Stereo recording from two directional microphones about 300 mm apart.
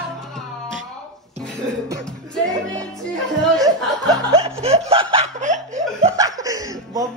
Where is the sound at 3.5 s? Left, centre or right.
Centre.